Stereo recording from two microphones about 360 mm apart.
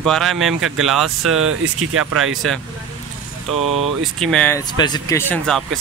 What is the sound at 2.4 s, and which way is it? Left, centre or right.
Speech, centre.